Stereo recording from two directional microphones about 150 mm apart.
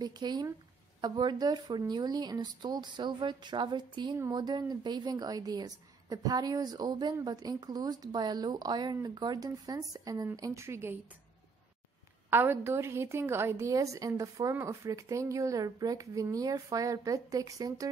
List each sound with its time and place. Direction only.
0.0 s speech: 30° right (ahead or behind)
12.3 s speech: 15° right (ahead or behind)